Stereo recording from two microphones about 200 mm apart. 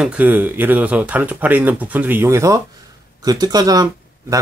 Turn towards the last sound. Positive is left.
turn(degrees=-15)  # may be behind; listen again after turning